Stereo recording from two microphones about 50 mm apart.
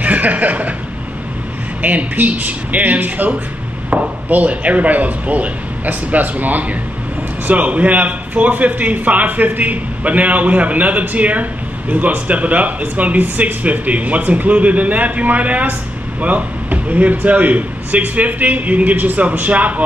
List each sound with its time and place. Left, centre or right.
0.0 s chuckle: right
1.8 s a man's voice: right